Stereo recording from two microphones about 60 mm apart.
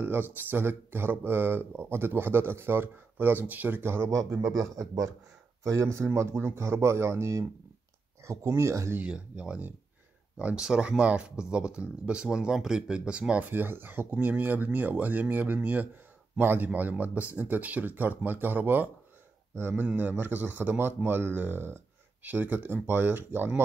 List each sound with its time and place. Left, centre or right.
0.0 s speech: right
4.4 s a man's voice: right
5.6 s speech: right
9.0 s speech: centre
13.4 s speech: right